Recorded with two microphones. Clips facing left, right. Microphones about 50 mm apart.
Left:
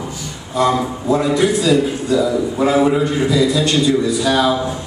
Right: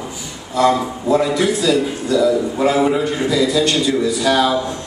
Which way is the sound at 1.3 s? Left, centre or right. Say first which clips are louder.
Left 2 dB; centre.